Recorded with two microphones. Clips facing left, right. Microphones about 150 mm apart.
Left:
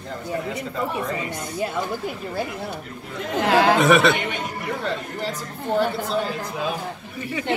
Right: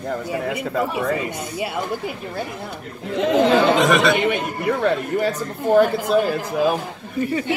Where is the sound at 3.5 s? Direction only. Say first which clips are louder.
Left 3 dB; 85° left.